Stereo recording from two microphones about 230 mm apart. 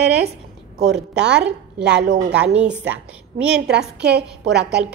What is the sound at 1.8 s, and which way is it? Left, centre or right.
Speech, right.